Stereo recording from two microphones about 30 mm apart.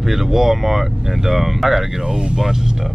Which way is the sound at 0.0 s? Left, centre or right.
Centre.